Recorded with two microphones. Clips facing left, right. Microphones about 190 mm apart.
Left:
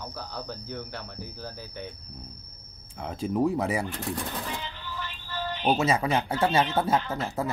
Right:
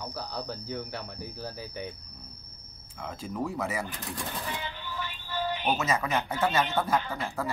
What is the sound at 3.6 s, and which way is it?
Speech, 30° left (ahead or behind).